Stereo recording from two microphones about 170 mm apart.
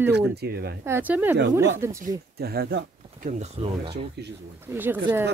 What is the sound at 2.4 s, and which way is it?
Speech, 65° right (ahead or behind).